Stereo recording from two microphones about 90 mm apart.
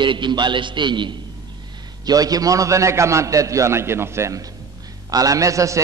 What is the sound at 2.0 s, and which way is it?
A man's voice, 45° right (ahead or behind).